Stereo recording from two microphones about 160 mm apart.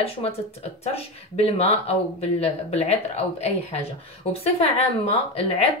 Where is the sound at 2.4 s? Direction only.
40° left (ahead or behind).